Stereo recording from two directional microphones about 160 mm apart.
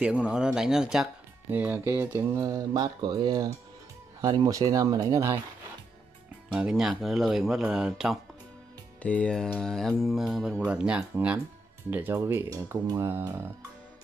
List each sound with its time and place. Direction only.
0.0 s speech: 5° right (ahead or behind)
6.5 s speech: 5° right (ahead or behind)
9.0 s speech: 5° left (ahead or behind); by 13.7 s 15° right (ahead or behind)